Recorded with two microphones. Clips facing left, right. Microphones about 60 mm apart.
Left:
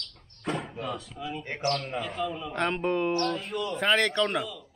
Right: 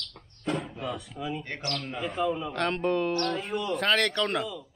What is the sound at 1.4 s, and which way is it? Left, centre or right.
Speech, centre.